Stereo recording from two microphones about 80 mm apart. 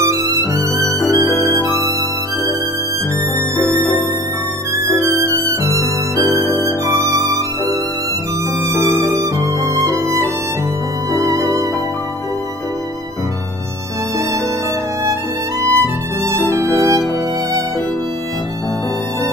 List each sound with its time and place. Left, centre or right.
0.1 s music: right
1.0 s music: left
1.6 s music: right
4.9 s violin: right
6.3 s music: left
9.0 s music: right
15.6 s music: right